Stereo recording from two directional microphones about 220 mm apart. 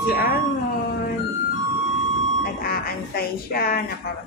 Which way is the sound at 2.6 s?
40° left (ahead or behind).